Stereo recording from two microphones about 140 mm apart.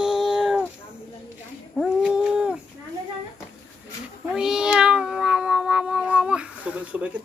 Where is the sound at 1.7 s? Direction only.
5° right (ahead or behind).